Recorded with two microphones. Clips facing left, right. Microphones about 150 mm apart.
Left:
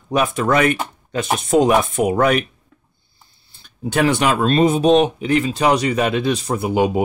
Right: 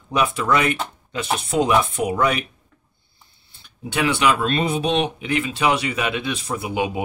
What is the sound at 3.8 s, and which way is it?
Speech, 45° left (ahead or behind).